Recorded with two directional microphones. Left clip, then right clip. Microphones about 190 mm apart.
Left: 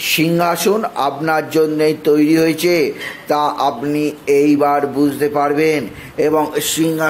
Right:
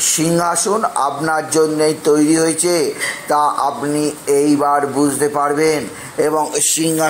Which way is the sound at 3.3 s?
15° left (ahead or behind).